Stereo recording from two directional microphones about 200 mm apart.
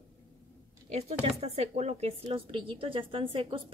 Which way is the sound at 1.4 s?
30° right (ahead or behind).